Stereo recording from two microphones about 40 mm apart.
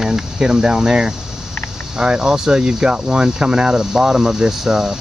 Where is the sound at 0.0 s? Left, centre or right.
Centre.